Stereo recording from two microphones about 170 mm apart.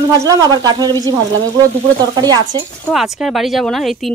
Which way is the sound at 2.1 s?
25° right (ahead or behind).